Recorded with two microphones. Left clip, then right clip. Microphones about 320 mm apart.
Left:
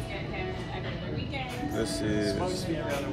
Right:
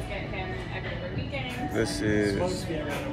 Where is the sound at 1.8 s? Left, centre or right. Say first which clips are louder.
Right 4 dB; centre.